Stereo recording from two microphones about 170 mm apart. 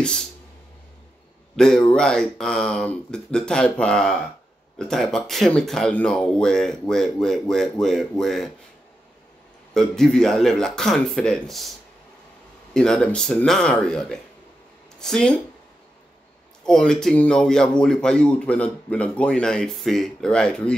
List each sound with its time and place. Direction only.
1.6 s speech: 5° left (ahead or behind)
9.8 s speech: 5° left (ahead or behind)
12.7 s speech: 5° left (ahead or behind)
16.6 s speech: 5° left (ahead or behind)